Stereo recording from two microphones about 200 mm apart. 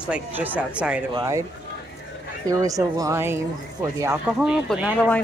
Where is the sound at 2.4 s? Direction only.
15° right (ahead or behind).